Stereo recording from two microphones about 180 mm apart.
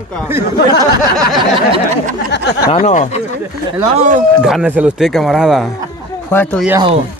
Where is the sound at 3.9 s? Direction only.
40° right (ahead or behind).